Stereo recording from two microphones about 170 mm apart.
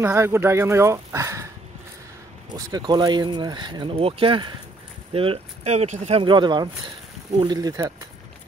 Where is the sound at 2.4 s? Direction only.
25° right (ahead or behind).